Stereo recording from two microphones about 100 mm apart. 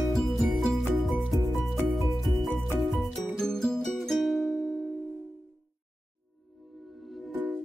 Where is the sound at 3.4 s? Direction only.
5° left (ahead or behind).